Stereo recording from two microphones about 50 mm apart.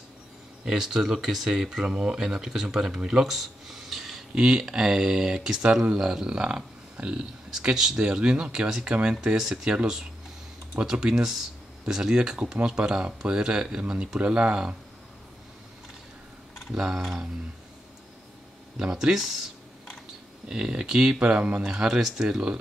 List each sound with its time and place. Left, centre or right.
0.7 s speech: centre
16.7 s speech: centre
18.8 s speech: centre